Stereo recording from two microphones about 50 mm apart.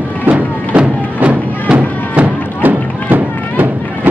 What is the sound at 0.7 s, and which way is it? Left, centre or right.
Music, right.